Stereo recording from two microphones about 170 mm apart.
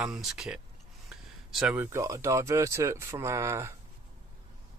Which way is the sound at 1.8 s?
15° right (ahead or behind).